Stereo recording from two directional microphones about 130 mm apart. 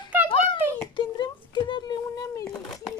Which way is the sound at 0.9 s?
35° left (ahead or behind).